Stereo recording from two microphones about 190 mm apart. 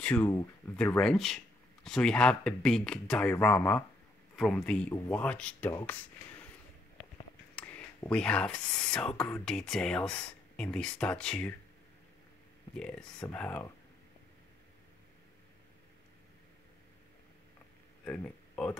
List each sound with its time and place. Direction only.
0.0 s speech: 5° left (ahead or behind)
7.5 s speech: 5° left (ahead or behind)
12.7 s speech: 5° left (ahead or behind)
18.0 s speech: 10° left (ahead or behind)